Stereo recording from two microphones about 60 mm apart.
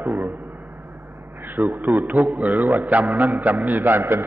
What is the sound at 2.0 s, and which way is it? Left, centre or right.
A man's voice, right.